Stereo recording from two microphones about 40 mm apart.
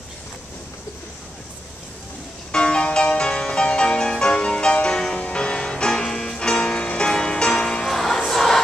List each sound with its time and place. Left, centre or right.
2.5 s music: left
7.8 s music: centre
8.3 s choir: centre